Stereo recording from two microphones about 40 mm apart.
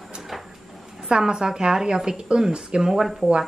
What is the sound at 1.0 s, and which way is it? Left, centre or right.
A woman's voice, centre.